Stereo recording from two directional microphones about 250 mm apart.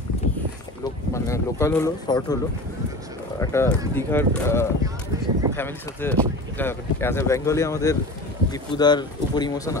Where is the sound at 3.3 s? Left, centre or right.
Centre.